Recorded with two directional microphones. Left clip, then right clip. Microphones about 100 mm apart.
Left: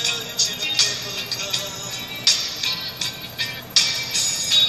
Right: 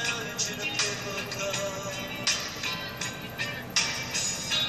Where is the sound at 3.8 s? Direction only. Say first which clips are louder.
Left 8 dB; 45° right (ahead or behind).